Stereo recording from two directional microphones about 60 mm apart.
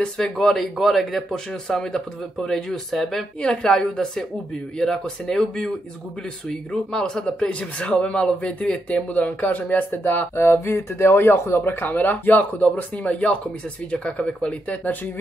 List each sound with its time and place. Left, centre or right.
0.0 s speech: centre
6.7 s a man's voice: centre